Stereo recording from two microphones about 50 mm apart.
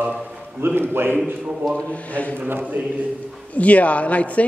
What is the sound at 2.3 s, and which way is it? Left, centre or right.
Speech, right.